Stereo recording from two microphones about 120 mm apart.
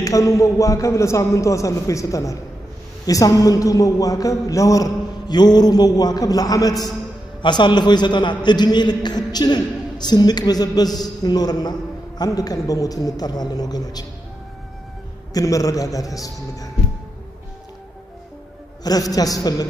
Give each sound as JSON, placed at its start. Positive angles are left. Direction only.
{"t": 0.0, "sound": "a man's voice", "side_deg": 25}
{"t": 15.3, "sound": "a man's voice", "side_deg": 30}
{"t": 18.9, "sound": "a woman's voice", "side_deg": 30}